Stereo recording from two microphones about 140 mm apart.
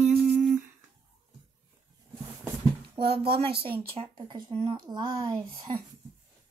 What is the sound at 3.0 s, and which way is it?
Speech, 40° right (ahead or behind).